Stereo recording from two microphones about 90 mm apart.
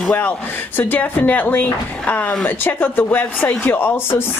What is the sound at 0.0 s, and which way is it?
Speech, 20° left (ahead or behind).